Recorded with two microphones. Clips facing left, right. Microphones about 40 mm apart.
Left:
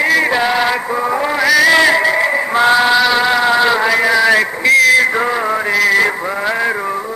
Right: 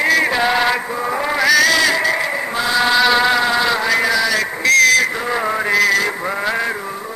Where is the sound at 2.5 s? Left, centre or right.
Left.